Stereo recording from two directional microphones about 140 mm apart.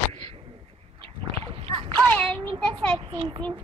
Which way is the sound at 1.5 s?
40° right (ahead or behind).